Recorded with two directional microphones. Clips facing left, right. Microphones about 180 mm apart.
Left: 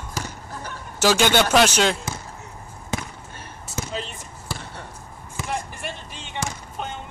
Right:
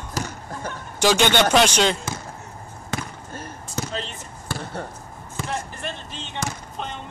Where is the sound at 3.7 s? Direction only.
5° left (ahead or behind).